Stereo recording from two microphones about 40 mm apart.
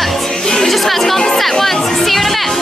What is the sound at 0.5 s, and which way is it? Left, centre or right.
Chatter, centre.